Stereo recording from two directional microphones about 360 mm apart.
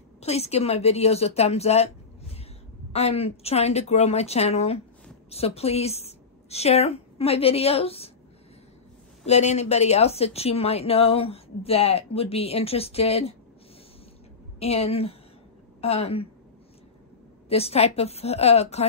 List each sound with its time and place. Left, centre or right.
0.2 s a woman's voice: centre
9.2 s a woman's voice: centre
14.6 s a woman's voice: centre
17.5 s a woman's voice: centre